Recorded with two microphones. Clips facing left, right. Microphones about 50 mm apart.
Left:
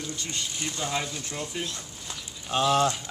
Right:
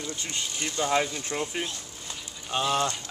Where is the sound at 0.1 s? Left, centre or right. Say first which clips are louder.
Even; centre.